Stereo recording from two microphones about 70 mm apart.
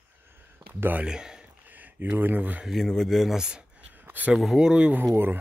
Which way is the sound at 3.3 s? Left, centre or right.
Centre.